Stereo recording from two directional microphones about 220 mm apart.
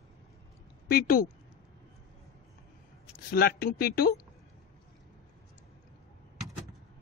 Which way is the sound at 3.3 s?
45° left (ahead or behind).